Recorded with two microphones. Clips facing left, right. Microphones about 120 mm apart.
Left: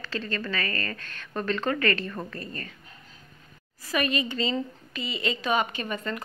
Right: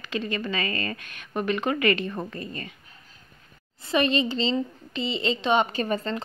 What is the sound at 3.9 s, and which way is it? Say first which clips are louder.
A woman's voice: right 4 dB; 25° right (ahead or behind).